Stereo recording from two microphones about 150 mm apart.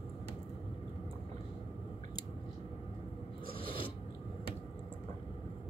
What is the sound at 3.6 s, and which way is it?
Filing, 35° left (ahead or behind).